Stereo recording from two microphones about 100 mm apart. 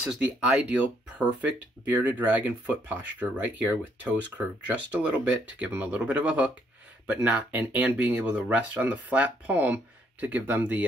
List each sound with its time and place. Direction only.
0.0 s speech: 10° right (ahead or behind)